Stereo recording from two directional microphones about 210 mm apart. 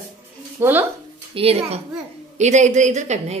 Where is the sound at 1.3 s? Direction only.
30° right (ahead or behind).